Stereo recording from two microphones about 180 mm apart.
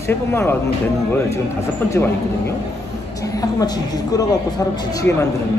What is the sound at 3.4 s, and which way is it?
Speech, 20° left (ahead or behind).